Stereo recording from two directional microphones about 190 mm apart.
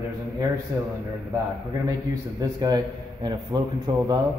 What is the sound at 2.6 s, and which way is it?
A man's voice, 20° right (ahead or behind).